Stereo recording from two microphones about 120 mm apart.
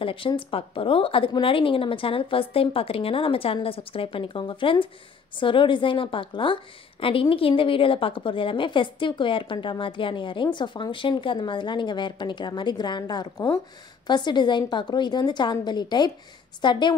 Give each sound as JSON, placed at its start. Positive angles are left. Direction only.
{"t": 0.0, "sound": "a woman's voice", "side_deg": 45}